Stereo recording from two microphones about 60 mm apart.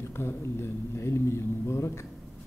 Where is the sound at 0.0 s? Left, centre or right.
Left.